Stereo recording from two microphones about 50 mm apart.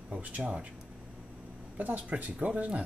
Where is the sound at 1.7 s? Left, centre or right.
Right.